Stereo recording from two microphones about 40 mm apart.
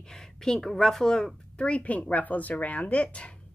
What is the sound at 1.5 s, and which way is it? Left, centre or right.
Speech, left.